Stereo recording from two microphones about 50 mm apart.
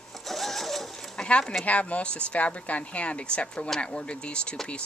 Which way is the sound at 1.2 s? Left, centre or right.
Left.